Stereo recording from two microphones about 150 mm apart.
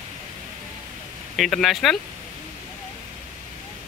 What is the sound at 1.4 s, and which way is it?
Speech, centre (ahead or behind).